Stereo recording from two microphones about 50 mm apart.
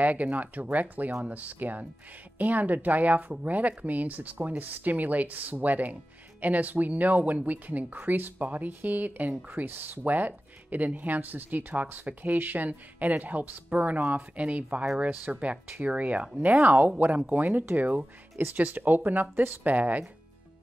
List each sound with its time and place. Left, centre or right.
0.0 s speech: right